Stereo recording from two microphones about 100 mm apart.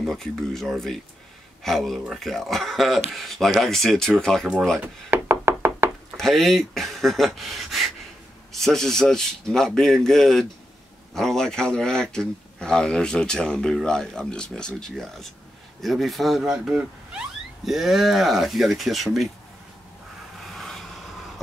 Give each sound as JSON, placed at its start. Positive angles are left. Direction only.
{"t": 0.0, "sound": "speech", "side_deg": 5}
{"t": 4.8, "sound": "knock", "side_deg": -20}
{"t": 6.1, "sound": "speech", "side_deg": 5}
{"t": 20.4, "sound": "vehicle", "side_deg": 5}